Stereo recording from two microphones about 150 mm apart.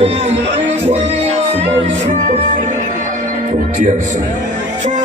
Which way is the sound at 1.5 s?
50° right (ahead or behind).